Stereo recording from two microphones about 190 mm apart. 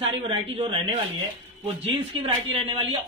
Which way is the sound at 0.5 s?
30° right (ahead or behind).